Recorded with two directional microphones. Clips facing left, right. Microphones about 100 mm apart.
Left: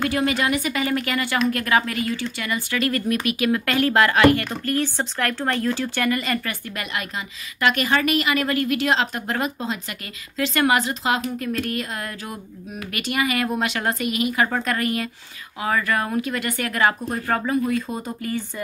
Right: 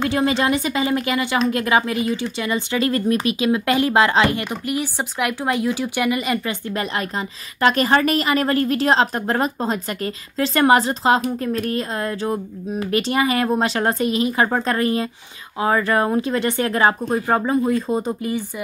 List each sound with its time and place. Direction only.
0.0 s speech: 25° right (ahead or behind)
6.7 s a woman's voice: 35° right (ahead or behind)